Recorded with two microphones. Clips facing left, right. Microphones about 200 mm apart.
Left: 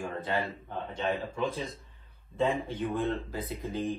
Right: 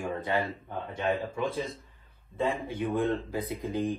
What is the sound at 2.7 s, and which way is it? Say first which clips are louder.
Speech: right 2 dB; 15° right (ahead or behind).